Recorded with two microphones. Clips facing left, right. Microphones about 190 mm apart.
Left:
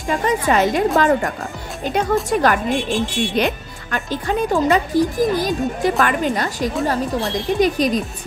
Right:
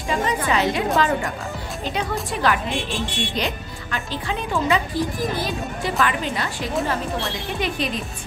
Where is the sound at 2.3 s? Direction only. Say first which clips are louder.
Left 3 dB; 45° left (ahead or behind).